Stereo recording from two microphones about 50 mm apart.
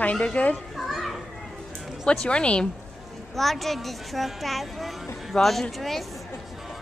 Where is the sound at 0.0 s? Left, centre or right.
Left.